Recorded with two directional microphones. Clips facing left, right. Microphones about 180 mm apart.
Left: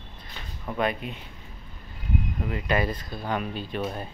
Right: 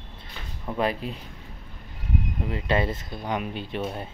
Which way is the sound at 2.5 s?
25° right (ahead or behind).